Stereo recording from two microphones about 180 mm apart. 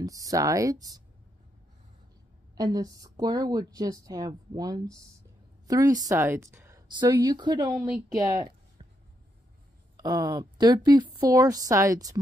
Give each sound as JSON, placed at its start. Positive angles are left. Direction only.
{"t": 0.0, "sound": "speech", "side_deg": -20}
{"t": 2.5, "sound": "speech", "side_deg": -20}
{"t": 9.9, "sound": "speech", "side_deg": -20}